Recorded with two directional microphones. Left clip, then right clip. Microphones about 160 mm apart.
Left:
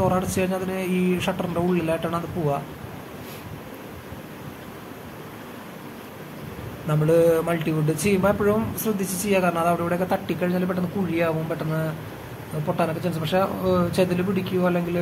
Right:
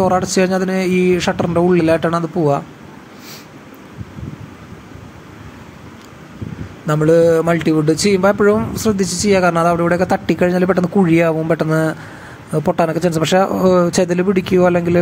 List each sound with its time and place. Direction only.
0.0 s speech: 35° right (ahead or behind)
6.9 s speech: 35° right (ahead or behind)